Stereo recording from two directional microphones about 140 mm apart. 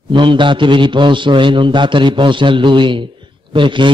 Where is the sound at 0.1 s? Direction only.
35° right (ahead or behind).